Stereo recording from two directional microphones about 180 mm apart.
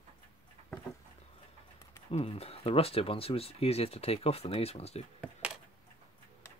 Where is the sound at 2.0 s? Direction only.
35° left (ahead or behind).